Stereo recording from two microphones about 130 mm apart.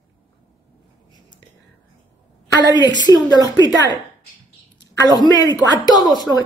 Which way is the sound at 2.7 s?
35° left (ahead or behind).